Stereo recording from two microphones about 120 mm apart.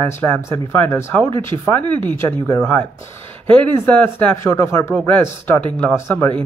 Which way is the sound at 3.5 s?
10° left (ahead or behind).